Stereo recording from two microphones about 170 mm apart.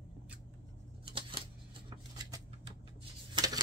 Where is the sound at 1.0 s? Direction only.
30° right (ahead or behind).